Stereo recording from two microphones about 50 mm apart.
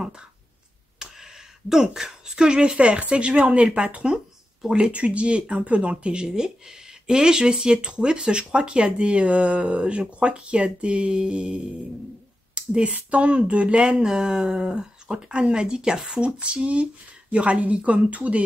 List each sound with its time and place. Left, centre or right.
0.9 s a woman's voice: centre; by 18.4 s right